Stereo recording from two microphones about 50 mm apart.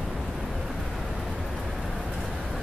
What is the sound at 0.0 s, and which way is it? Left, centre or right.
Vehicle, centre.